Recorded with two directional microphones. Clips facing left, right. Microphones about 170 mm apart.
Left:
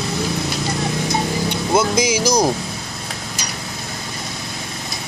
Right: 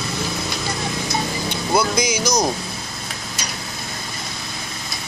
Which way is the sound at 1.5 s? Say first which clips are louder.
Left 1 dB; 20° left (ahead or behind).